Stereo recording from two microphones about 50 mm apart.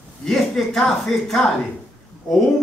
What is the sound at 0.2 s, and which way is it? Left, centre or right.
A man's voice, centre.